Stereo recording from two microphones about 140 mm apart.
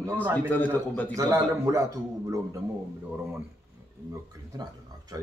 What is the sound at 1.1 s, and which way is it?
Speech, 20° right (ahead or behind).